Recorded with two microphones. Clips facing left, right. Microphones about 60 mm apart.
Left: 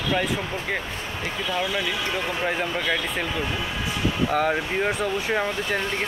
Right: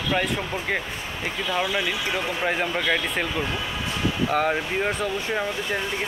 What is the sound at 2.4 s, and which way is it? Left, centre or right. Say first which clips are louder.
Speech: right 2 dB; centre.